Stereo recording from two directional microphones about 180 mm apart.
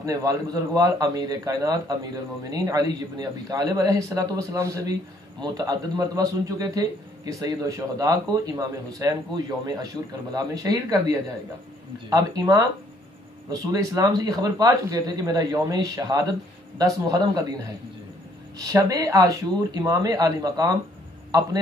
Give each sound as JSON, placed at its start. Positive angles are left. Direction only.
{"t": 0.0, "sound": "speech", "side_deg": -20}
{"t": 10.3, "sound": "speech", "side_deg": -20}
{"t": 18.6, "sound": "speech", "side_deg": -20}